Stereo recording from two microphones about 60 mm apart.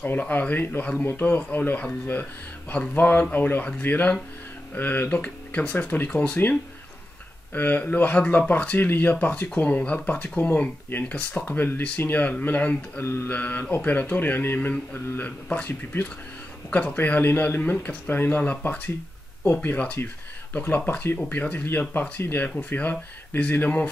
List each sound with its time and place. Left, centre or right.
0.0 s speech: left
2.7 s speech: left
7.5 s speech: left
13.0 s mantra: left
13.3 s speech: left
14.7 s speech: left
16.7 s speech: left